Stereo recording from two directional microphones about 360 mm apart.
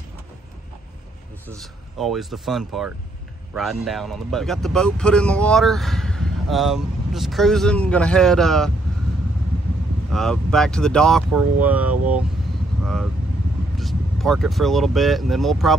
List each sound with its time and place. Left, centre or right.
1.6 s speech: centre
10.1 s speech: centre
12.8 s vehicle: centre
13.7 s speech: centre